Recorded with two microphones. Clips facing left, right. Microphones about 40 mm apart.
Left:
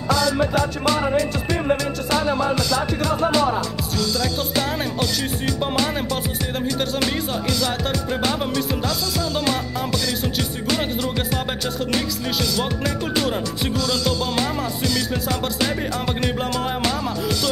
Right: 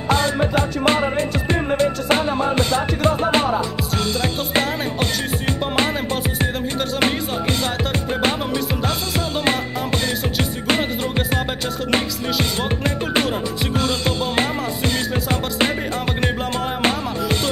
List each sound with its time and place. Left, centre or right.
0.1 s music: right
7.0 s music: right
11.9 s music: right